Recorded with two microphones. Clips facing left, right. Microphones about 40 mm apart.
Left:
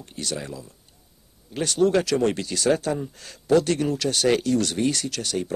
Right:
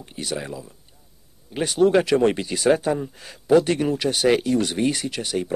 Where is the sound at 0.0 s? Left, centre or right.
Centre.